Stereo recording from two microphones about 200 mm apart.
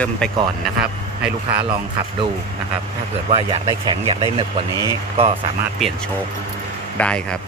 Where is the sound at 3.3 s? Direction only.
30° right (ahead or behind).